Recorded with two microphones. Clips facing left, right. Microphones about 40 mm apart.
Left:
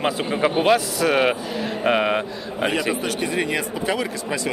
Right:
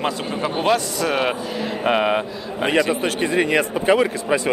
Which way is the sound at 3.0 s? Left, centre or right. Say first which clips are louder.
Right 4 dB; right.